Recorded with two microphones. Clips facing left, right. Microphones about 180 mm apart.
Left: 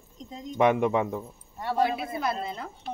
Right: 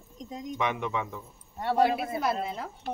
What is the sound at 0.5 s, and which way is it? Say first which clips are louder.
Speech: left 9 dB; 50° left (ahead or behind).